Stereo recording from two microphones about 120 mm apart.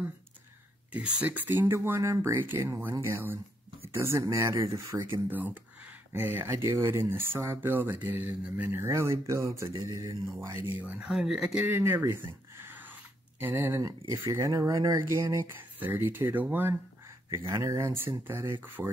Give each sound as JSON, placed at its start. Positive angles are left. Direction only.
{"t": 0.9, "sound": "speech", "side_deg": -10}
{"t": 10.8, "sound": "speech", "side_deg": -10}
{"t": 15.8, "sound": "speech", "side_deg": -15}
{"t": 17.3, "sound": "speech", "side_deg": -25}